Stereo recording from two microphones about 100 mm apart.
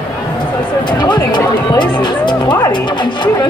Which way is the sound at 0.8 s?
50° left (ahead or behind).